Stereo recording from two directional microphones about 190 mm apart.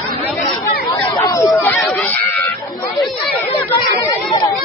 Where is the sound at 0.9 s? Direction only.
20° left (ahead or behind).